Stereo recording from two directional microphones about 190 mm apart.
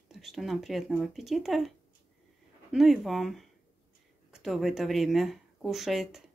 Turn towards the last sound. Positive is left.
turn(degrees=0)  # may be behind; listen again after turning